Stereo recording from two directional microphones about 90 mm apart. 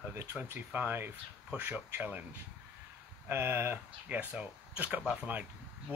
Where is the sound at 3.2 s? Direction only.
25° right (ahead or behind); by 5.3 s 10° right (ahead or behind).